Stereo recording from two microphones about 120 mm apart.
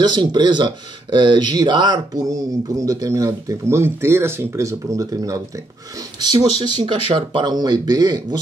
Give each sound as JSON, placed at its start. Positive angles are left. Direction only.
{"t": 0.0, "sound": "speech", "side_deg": -35}